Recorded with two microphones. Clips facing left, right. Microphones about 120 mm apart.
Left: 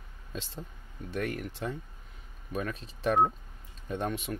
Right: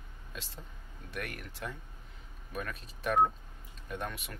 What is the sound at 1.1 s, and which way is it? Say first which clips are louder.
Speech: left 8 dB; 25° left (ahead or behind).